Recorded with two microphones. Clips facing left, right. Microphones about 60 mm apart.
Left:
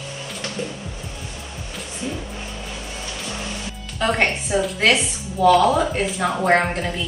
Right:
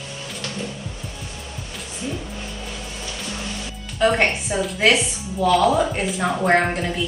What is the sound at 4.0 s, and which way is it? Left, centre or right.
Speech, centre.